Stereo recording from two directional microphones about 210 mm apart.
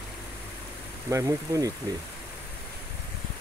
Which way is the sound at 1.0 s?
15° right (ahead or behind).